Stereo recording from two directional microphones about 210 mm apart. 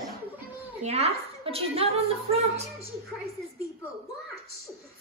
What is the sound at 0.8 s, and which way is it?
A woman's voice, 30° right (ahead or behind).